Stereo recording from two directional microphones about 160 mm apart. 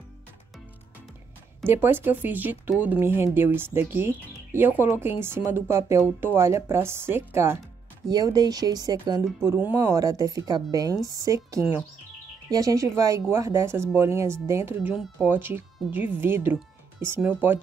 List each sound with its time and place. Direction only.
1.7 s speech: 15° right (ahead or behind)